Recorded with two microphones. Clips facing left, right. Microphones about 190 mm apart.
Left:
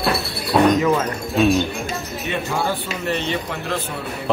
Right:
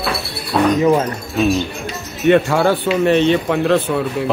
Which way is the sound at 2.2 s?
65° right (ahead or behind).